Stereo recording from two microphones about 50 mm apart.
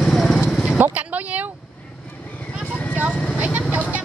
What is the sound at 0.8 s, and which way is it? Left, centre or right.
Vehicle, right.